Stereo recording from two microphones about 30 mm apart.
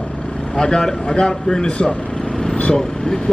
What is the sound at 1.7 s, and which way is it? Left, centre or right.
Speech, left.